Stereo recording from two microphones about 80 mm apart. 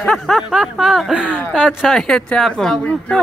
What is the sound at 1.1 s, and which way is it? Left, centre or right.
Speech, centre.